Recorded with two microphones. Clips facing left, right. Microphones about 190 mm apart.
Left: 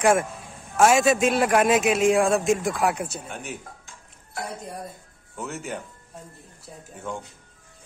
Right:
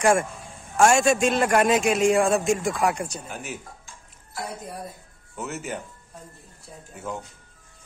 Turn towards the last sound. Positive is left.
turn(degrees=-5)  # may be behind; listen again after turning